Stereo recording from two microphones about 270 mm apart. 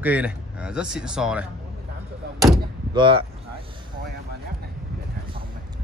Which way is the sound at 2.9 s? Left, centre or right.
Centre.